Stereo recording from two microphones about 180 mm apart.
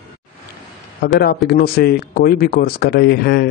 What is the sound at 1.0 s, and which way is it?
Speech, 60° left (ahead or behind).